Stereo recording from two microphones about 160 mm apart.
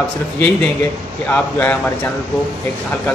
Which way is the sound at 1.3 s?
10° left (ahead or behind).